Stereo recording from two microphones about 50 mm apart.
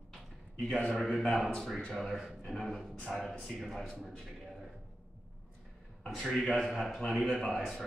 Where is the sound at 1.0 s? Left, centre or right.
Centre.